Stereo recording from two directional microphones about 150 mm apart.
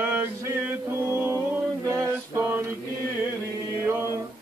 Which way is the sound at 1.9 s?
15° right (ahead or behind).